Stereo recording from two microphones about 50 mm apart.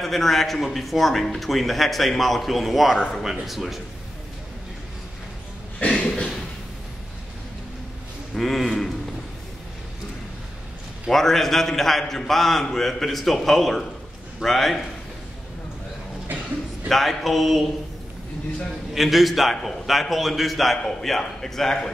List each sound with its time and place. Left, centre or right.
0.0 s a man's voice: centre
5.9 s a sound: centre
8.4 s a man's voice: centre
11.1 s a man's voice: centre
16.9 s a man's voice: centre
18.9 s a man's voice: centre